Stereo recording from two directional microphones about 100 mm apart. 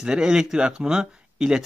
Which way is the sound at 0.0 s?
5° right (ahead or behind).